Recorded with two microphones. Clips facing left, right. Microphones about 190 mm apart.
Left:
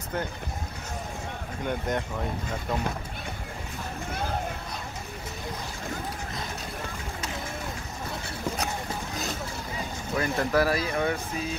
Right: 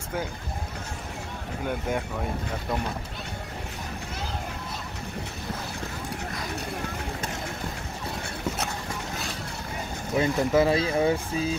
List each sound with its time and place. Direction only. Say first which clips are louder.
1.7 s speech: even; 5° right (ahead or behind)
10.1 s speech: right 3 dB; 20° right (ahead or behind)